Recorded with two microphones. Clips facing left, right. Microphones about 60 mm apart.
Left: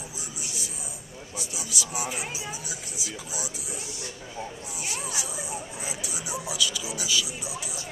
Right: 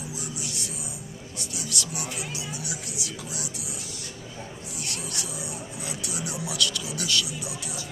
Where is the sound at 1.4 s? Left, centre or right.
Centre.